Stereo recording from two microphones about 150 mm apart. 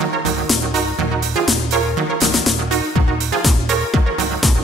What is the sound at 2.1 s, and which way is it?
Music, centre (ahead or behind).